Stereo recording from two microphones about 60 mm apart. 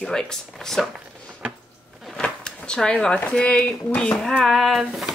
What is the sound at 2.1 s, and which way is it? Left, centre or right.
Drawer open or close, centre.